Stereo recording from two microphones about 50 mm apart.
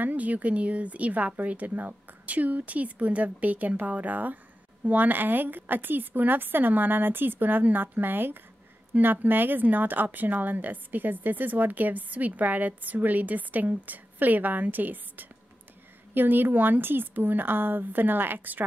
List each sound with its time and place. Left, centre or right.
0.0 s speech: right